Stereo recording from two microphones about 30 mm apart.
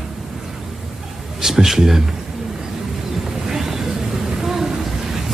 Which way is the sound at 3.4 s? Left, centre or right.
Centre.